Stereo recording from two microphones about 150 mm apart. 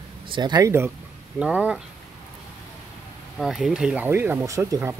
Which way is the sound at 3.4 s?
Centre (ahead or behind).